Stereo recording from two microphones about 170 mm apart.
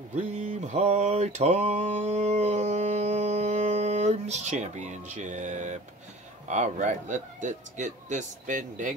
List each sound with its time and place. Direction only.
0.1 s mantra: 45° right (ahead or behind)
6.4 s speech: 45° right (ahead or behind)